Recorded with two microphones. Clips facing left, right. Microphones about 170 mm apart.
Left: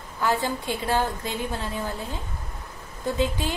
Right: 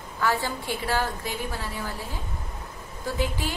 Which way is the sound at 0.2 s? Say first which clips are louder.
Left 2 dB; 20° left (ahead or behind).